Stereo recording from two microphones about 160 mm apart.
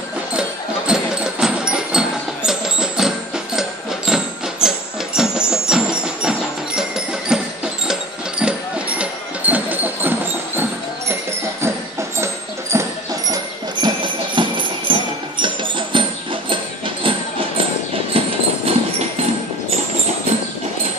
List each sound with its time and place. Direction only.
0.4 s music: 5° right (ahead or behind)
7.9 s a sound: 5° right (ahead or behind)
12.7 s a sound: 20° right (ahead or behind)
13.3 s music: 25° right (ahead or behind)
18.1 s train: 35° right (ahead or behind)
18.7 s music: 40° right (ahead or behind)